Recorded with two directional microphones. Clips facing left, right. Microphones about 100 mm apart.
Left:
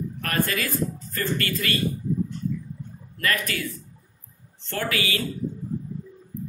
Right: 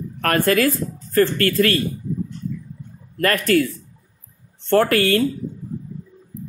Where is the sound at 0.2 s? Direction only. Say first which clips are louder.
Right 10 dB; 55° right (ahead or behind).